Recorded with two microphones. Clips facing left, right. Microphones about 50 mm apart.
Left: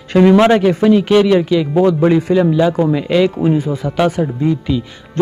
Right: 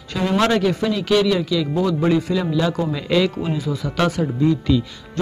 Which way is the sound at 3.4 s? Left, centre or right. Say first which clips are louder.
Left 8 dB; left.